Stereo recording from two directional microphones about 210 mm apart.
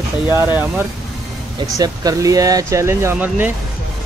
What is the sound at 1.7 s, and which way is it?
Speech, 15° right (ahead or behind).